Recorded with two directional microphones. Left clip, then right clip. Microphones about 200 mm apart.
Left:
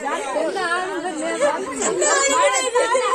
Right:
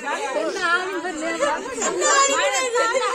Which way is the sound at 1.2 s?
30° right (ahead or behind).